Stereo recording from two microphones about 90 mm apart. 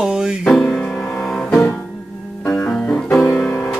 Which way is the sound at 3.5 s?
25° left (ahead or behind).